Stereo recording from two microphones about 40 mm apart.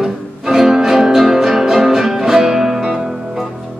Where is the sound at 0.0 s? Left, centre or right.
Centre.